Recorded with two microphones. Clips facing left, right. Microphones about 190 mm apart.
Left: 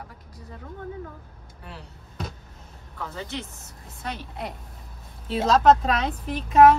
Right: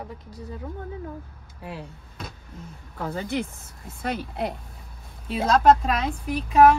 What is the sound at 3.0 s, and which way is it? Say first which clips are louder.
Speech: right 5 dB; 45° right (ahead or behind).